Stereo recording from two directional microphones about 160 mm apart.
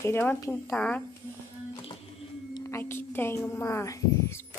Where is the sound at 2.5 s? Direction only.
20° left (ahead or behind).